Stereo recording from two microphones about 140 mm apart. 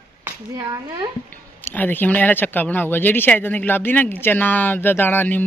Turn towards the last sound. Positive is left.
turn(degrees=15)  # may be behind; listen again after turning